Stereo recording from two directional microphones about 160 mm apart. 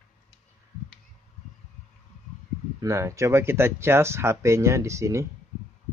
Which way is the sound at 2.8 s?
20° right (ahead or behind).